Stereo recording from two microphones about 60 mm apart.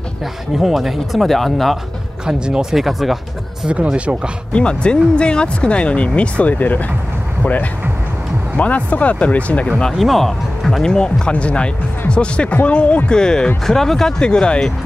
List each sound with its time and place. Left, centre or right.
0.6 s speech: centre
2.2 s speech: centre
2.8 s speech: centre
3.6 s speech: centre
4.5 s speech: centre
8.5 s speech: left
9.9 s speech: centre